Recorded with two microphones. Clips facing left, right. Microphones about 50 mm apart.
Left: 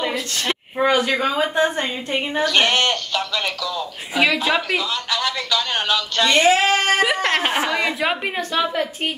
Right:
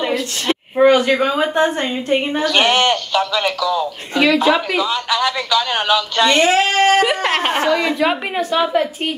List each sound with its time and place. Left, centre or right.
0.8 s a woman's voice: right
2.4 s a man's voice: centre
6.3 s female singing: right
7.2 s a man's voice: centre
8.1 s a woman's voice: centre